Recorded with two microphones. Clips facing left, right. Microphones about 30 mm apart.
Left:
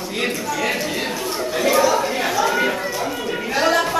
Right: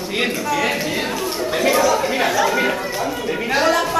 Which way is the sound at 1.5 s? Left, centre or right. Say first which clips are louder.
Even; centre.